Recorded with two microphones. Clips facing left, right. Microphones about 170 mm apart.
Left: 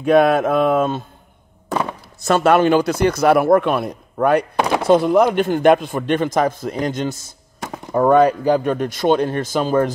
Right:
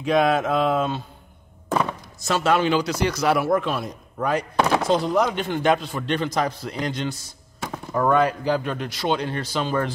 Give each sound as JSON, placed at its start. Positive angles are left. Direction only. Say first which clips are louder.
{"t": 0.0, "sound": "a man's voice", "louder": "left 6 dB", "side_deg": 55}
{"t": 2.2, "sound": "a man's voice", "louder": "left 6 dB", "side_deg": 55}